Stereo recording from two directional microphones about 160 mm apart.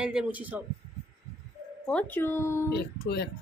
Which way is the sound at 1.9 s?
10° left (ahead or behind).